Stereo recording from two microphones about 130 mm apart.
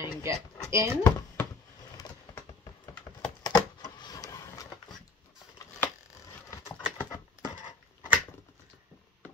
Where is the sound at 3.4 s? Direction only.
30° left (ahead or behind).